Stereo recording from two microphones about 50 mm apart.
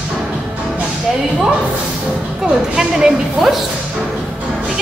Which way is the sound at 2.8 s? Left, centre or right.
Centre.